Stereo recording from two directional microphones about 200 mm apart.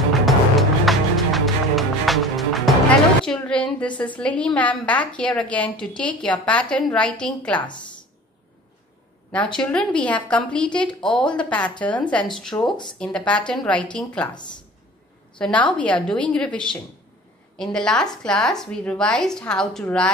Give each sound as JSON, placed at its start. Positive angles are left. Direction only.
{"t": 0.1, "sound": "music", "side_deg": 0}
{"t": 9.3, "sound": "a woman's voice", "side_deg": 5}
{"t": 12.6, "sound": "speech", "side_deg": 25}
{"t": 13.0, "sound": "a woman's voice", "side_deg": 5}
{"t": 15.3, "sound": "a woman's voice", "side_deg": 5}